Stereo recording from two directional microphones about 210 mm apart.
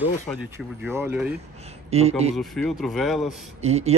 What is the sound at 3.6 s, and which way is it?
Speech, 30° right (ahead or behind).